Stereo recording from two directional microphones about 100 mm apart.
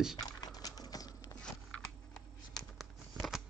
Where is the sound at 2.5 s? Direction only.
Centre (ahead or behind).